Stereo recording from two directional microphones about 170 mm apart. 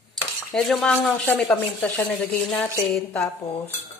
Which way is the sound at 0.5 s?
5° left (ahead or behind).